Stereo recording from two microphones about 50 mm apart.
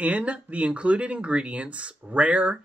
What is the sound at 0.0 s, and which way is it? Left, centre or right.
Speech, right.